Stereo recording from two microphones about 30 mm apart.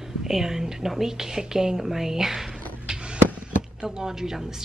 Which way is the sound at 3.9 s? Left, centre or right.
Centre.